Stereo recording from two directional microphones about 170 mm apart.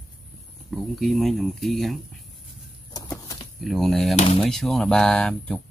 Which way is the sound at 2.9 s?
20° left (ahead or behind).